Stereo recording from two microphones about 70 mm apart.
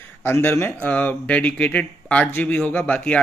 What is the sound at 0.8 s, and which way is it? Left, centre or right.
Speech, centre.